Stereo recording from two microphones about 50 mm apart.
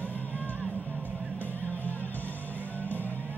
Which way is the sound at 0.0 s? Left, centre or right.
Left.